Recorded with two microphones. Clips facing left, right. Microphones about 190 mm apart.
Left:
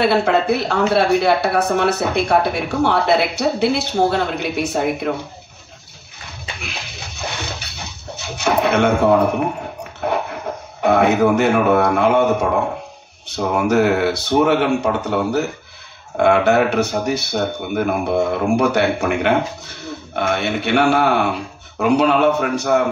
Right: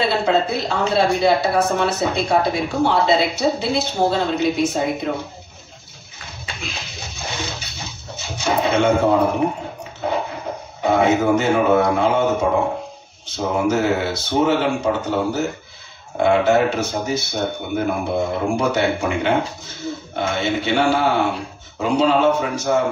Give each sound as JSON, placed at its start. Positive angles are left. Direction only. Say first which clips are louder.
{"t": 0.0, "sound": "speech", "louder": "left 3 dB", "side_deg": 60}
{"t": 7.7, "sound": "speech", "louder": "left 1 dB", "side_deg": 65}
{"t": 10.0, "sound": "a sound", "louder": "left 2 dB", "side_deg": 60}
{"t": 10.8, "sound": "speech", "louder": "left 2 dB", "side_deg": 65}